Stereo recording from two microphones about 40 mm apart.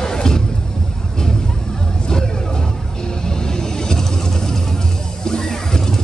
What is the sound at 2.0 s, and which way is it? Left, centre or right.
Vehicle, centre.